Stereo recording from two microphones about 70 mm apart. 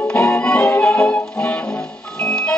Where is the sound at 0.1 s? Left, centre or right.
Left.